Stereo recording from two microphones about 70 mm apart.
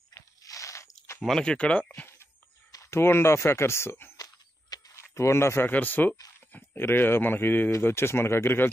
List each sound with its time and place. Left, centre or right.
0.1 s crunch: left
1.2 s speech: centre
2.7 s speech: left
4.2 s a sound: left
5.0 s speech: left
5.7 s speech: left